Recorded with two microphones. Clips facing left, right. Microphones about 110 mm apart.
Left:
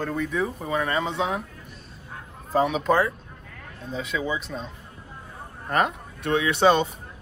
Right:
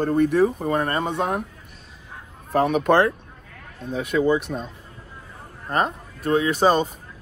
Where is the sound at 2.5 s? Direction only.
60° right (ahead or behind).